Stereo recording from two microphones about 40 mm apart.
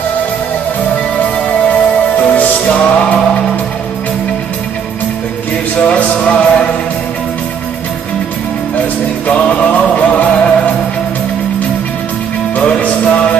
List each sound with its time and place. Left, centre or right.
1.2 s music: left
6.1 s music: left
9.3 s music: left
12.5 s music: left